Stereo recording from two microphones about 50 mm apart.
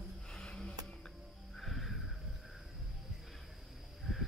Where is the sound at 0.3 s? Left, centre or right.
Centre.